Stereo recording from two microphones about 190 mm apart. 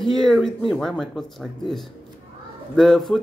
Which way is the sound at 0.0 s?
Centre (ahead or behind).